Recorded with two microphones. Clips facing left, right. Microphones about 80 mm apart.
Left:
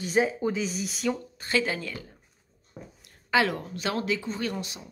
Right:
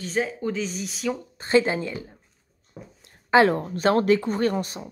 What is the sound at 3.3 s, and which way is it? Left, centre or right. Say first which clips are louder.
A woman's voice: right 7 dB; right.